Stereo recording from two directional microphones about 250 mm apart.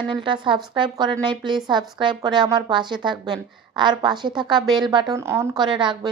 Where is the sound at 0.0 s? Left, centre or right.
Centre.